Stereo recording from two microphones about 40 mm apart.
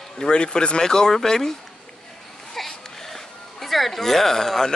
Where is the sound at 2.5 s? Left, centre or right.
Centre.